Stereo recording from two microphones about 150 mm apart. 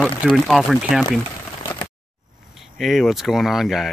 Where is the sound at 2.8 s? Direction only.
Centre (ahead or behind).